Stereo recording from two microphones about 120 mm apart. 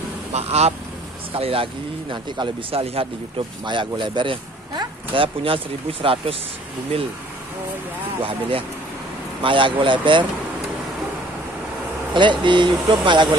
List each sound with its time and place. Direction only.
0.3 s speech: 60° right (ahead or behind)
1.3 s speech: 50° right (ahead or behind)
3.6 s speech: 40° right (ahead or behind)
8.2 s speech: 50° right (ahead or behind)
12.1 s speech: 40° right (ahead or behind)